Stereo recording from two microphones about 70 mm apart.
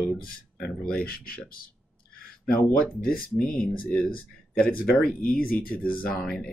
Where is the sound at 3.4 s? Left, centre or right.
Centre.